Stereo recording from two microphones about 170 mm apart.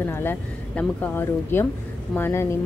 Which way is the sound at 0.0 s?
15° left (ahead or behind).